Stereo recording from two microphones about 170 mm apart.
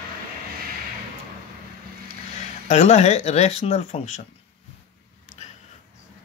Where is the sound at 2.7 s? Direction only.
40° left (ahead or behind).